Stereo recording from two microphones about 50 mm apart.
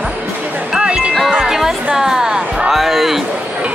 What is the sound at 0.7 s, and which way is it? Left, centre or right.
Music, right.